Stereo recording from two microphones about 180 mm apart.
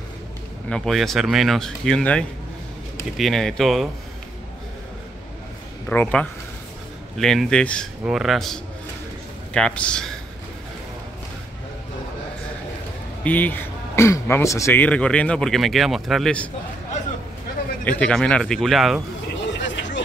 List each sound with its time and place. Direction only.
0.7 s speech: 5° left (ahead or behind)
5.9 s speech: 10° left (ahead or behind)
13.2 s speech: 10° left (ahead or behind)
17.8 s speech: 5° left (ahead or behind)
19.6 s vehicle: 90° left